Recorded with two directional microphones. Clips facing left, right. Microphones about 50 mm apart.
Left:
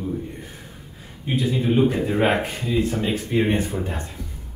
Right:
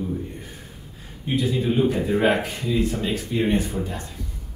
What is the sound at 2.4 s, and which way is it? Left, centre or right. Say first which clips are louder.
Speech: left 1 dB; left.